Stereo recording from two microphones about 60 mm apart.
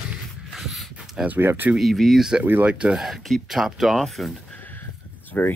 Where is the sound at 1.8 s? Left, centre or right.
Centre.